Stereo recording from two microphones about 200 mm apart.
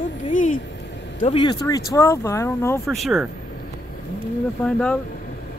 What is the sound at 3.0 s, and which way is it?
Speech, centre (ahead or behind).